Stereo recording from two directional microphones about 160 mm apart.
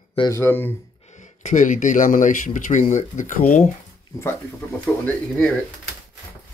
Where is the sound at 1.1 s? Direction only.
50° left (ahead or behind).